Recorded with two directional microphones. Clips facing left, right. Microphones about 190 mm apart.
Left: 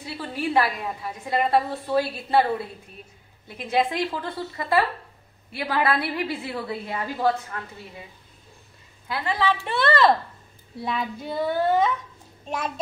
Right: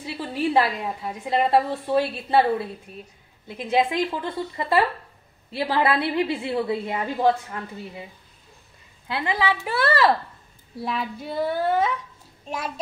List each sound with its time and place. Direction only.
0.0 s a woman's voice: 25° right (ahead or behind)
3.4 s a woman's voice: 20° right (ahead or behind)
9.0 s a woman's voice: 20° right (ahead or behind)
10.8 s child singing: centre (ahead or behind)